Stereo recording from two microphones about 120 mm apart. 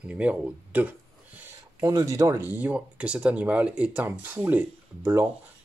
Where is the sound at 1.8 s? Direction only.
30° right (ahead or behind).